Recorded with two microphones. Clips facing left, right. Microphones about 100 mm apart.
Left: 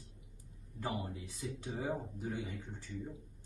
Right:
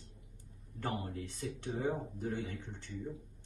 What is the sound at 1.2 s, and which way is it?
A man's voice, 10° left (ahead or behind).